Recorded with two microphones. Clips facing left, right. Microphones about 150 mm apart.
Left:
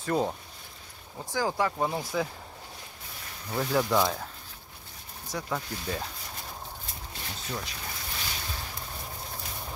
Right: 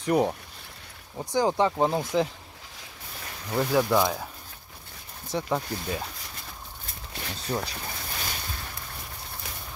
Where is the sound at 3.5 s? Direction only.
10° right (ahead or behind).